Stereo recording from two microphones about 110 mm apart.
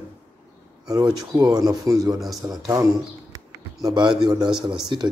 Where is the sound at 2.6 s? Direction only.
30° right (ahead or behind).